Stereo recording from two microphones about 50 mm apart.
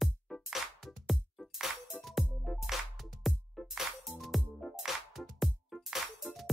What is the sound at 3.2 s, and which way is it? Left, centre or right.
Music, centre.